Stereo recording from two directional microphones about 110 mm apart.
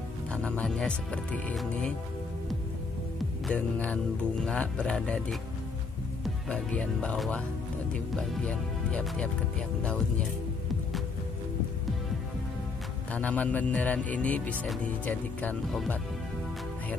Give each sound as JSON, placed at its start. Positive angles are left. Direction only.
{"t": 0.3, "sound": "speech", "side_deg": 10}
{"t": 3.4, "sound": "speech", "side_deg": 10}
{"t": 13.1, "sound": "speech", "side_deg": 15}